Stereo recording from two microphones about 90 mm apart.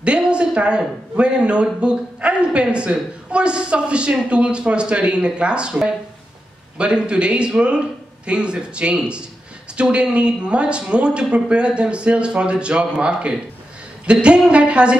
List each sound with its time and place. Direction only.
0.0 s speech: 10° right (ahead or behind)